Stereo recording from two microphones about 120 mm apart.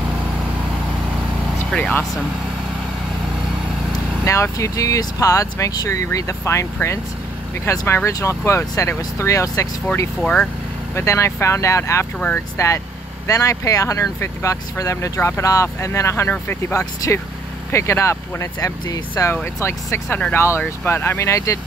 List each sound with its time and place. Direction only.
1.7 s speech: 10° left (ahead or behind)
4.2 s speech: 25° left (ahead or behind)
10.2 s speech: 5° left (ahead or behind)
11.0 s speech: 20° left (ahead or behind)